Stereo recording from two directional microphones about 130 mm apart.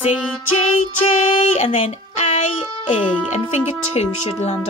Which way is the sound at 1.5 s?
60° left (ahead or behind).